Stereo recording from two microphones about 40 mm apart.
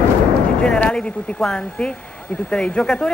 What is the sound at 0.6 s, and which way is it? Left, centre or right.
Speech, left.